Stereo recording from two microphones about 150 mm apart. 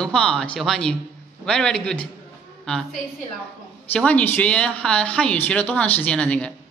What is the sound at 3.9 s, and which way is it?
Speech, 10° left (ahead or behind).